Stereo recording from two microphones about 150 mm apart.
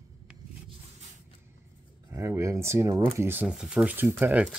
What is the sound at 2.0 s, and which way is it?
Speech, 20° right (ahead or behind).